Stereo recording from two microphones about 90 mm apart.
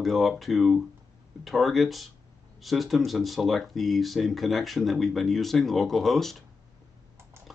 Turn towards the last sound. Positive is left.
turn(degrees=0)  # may be behind; listen again after turning